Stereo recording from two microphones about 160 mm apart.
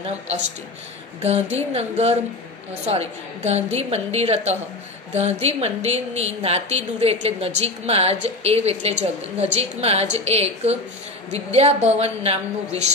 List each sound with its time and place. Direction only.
1.2 s a woman's voice: 40° right (ahead or behind)